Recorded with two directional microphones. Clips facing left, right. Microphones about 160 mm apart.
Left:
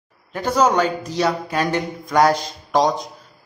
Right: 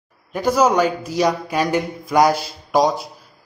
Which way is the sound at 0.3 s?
10° right (ahead or behind).